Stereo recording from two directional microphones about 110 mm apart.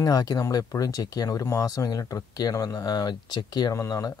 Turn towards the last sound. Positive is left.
turn(degrees=30)  # may be behind; listen again after turning